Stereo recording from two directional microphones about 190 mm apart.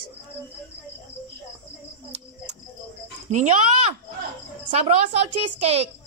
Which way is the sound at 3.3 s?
40° right (ahead or behind).